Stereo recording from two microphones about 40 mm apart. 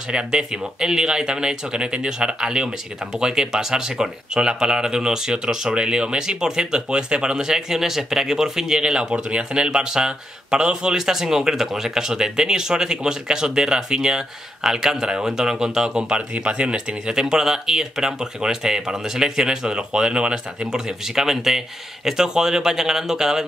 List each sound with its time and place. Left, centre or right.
0.1 s speech: centre
21.1 s speech: centre